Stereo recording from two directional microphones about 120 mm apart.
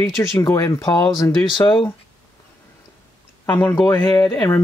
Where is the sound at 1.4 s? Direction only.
45° left (ahead or behind).